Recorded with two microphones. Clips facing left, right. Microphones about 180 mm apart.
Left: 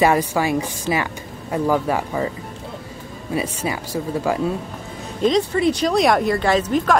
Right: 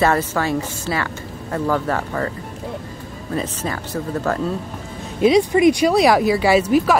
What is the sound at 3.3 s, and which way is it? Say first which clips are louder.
A woman's voice: left 1 dB; 10° left (ahead or behind).